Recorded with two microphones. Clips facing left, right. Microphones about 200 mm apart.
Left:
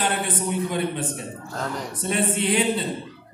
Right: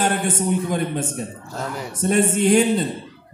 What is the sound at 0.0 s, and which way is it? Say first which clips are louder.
A man's voice: right 4 dB; 45° right (ahead or behind).